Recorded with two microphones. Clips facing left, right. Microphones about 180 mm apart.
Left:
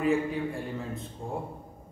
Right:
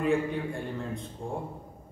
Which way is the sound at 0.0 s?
Centre (ahead or behind).